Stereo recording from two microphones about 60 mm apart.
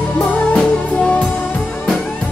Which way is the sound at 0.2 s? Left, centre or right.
Centre.